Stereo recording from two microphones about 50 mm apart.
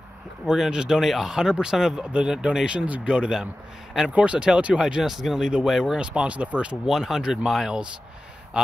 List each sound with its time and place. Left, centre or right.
0.5 s speech: centre
4.1 s speech: right; by 5.9 s centre
5.9 s speech: right
6.9 s speech: centre